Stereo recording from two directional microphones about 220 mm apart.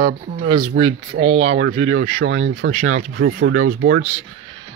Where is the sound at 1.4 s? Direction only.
65° right (ahead or behind).